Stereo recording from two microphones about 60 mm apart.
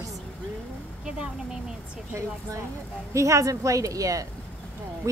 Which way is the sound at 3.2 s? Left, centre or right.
Right.